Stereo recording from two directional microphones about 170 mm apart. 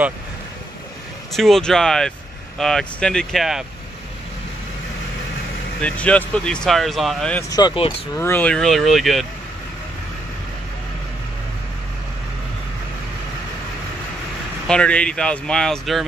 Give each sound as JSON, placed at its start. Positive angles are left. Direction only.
{"t": 1.3, "sound": "speech", "side_deg": 0}
{"t": 5.8, "sound": "speech", "side_deg": 5}
{"t": 7.4, "sound": "speech", "side_deg": 20}
{"t": 8.2, "sound": "speech", "side_deg": 10}
{"t": 14.7, "sound": "speech", "side_deg": 5}